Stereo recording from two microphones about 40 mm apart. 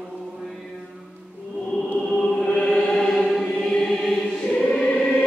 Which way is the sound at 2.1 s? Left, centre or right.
Left.